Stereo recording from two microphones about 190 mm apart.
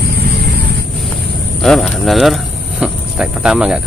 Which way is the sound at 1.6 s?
Centre (ahead or behind).